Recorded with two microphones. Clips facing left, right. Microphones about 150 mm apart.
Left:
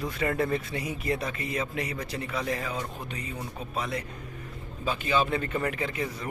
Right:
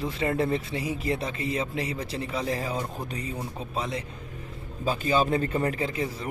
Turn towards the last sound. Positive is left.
turn(degrees=-30)  # may be behind; listen again after turning